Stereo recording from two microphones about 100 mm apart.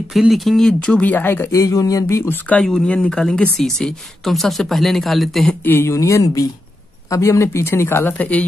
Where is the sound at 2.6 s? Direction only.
5° left (ahead or behind).